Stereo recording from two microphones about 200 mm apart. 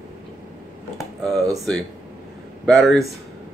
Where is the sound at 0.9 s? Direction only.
Centre (ahead or behind).